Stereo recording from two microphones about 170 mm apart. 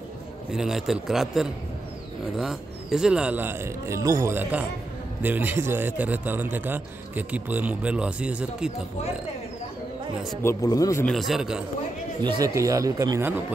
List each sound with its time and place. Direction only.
0.5 s a man's voice: 5° right (ahead or behind)
10.4 s speech: 15° left (ahead or behind)
11.1 s a man's voice: centre (ahead or behind)
12.2 s speech: 25° right (ahead or behind)